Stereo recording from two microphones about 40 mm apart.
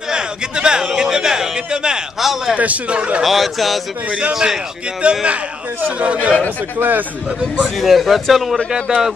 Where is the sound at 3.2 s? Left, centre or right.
Centre.